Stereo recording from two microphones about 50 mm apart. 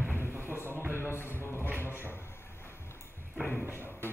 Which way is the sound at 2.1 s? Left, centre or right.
Left.